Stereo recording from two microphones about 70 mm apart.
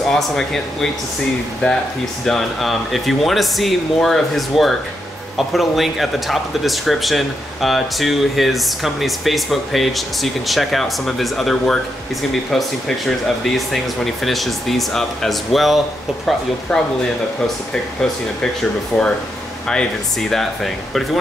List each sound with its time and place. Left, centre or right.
0.1 s speech: centre
2.2 s speech: centre
18.9 s speech: centre